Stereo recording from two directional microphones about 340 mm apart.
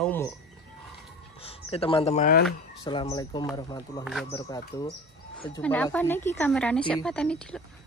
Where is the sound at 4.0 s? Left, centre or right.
Centre.